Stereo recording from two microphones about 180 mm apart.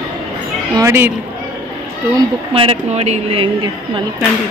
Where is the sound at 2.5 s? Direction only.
30° right (ahead or behind).